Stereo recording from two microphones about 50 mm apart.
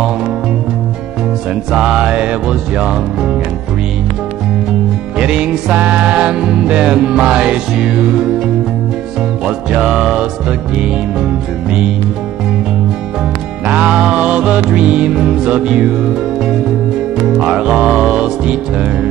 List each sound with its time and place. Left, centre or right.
1.7 s music: centre
5.2 s music: right
5.8 s music: right
6.0 s music: right
6.4 s music: centre
9.7 s music: centre
13.7 s music: right